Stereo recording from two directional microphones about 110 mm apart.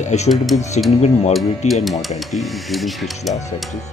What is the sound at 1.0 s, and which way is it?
Speech, 80° left.